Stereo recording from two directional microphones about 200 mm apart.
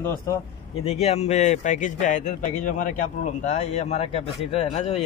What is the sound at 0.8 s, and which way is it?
Speech, 30° left (ahead or behind).